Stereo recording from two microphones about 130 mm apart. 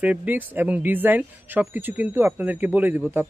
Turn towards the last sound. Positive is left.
turn(degrees=-15)  # may be behind; listen again after turning